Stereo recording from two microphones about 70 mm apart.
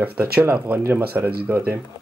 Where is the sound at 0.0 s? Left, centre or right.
Right.